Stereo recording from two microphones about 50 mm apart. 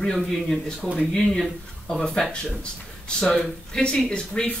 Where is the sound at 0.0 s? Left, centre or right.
Centre.